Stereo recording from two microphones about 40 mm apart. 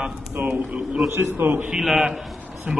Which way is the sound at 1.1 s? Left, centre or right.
Right.